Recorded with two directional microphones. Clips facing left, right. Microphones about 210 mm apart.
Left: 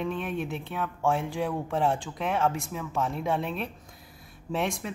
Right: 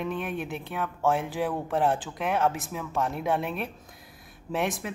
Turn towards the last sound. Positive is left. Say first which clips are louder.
# right 1 dB
turn(degrees=0)  # may be behind; listen again after turning